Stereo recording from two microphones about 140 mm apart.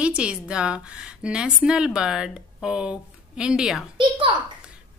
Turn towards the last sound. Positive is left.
turn(degrees=-35)  # may be behind; listen again after turning